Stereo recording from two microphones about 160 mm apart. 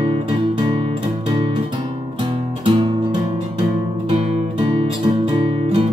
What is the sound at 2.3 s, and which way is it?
Music, 35° right (ahead or behind).